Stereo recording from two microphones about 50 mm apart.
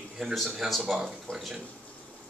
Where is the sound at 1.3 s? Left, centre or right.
Left.